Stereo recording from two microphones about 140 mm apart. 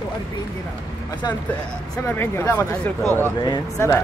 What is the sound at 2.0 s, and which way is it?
Speech, 20° left (ahead or behind).